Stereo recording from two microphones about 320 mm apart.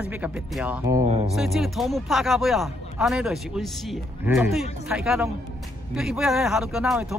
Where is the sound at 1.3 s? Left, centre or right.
Centre.